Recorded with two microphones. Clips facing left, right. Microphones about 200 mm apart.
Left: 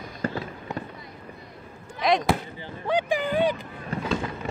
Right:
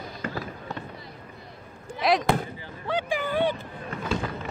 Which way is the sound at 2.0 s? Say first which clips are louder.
Even; centre (ahead or behind).